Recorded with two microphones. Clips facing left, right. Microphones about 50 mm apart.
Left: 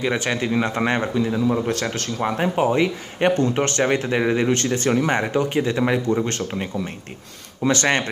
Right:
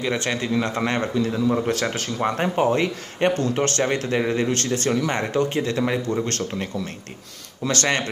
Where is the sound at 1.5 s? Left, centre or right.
Centre.